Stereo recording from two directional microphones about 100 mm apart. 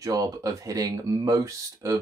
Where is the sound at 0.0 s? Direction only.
35° right (ahead or behind).